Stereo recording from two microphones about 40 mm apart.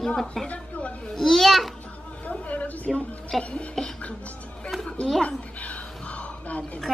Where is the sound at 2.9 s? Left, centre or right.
Centre.